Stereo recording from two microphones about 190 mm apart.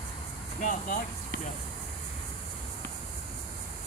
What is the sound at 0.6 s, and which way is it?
Speech, 45° left (ahead or behind).